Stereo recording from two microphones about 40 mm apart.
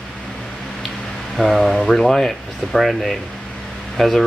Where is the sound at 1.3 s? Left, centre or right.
Centre.